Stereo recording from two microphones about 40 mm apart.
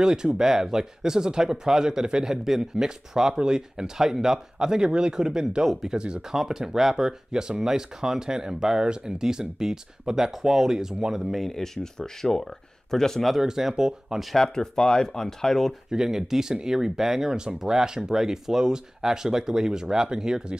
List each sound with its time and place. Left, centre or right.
0.0 s speech: centre
6.3 s speech: centre
11.3 s speech: centre
13.4 s speech: centre
14.3 s speech: centre
15.9 s speech: centre